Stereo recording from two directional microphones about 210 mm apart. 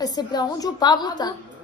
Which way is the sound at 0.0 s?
20° left (ahead or behind).